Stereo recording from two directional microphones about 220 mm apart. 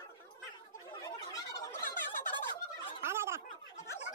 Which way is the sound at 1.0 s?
15° left (ahead or behind).